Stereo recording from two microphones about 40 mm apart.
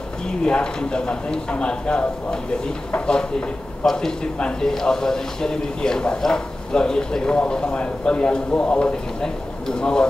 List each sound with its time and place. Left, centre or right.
0.4 s a man's voice: left